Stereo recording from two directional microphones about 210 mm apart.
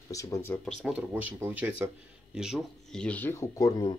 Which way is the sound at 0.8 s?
5° right (ahead or behind).